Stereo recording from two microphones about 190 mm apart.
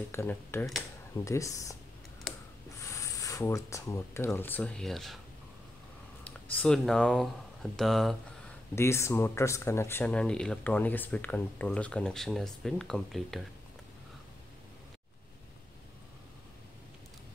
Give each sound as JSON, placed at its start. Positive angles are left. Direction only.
{"t": 0.1, "sound": "speech", "side_deg": 15}
{"t": 2.8, "sound": "speech", "side_deg": 15}
{"t": 6.2, "sound": "speech", "side_deg": 5}
{"t": 8.7, "sound": "speech", "side_deg": 15}